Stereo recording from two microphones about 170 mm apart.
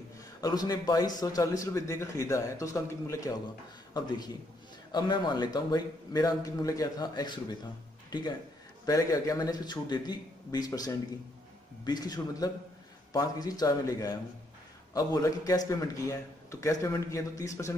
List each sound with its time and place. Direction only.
0.4 s a man's voice: 20° left (ahead or behind)